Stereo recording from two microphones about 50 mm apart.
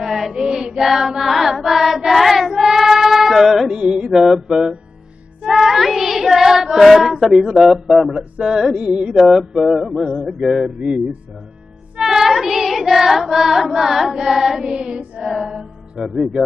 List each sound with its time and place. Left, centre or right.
0.0 s child singing: centre
3.7 s mantra: centre
5.4 s child singing: centre
8.5 s mantra: centre
8.7 s carnatic music: centre
9.1 s mantra: centre
9.7 s music: centre
12.0 s child singing: centre
15.2 s mantra: centre